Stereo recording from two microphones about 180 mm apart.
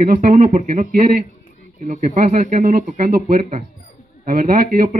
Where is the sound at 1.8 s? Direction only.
45° right (ahead or behind).